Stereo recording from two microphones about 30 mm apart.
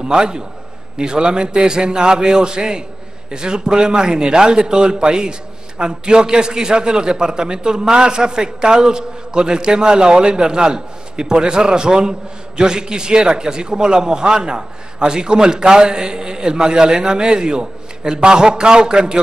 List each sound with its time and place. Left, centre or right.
0.0 s a man's voice: right